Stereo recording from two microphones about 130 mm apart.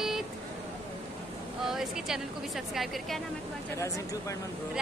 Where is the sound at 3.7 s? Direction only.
20° left (ahead or behind).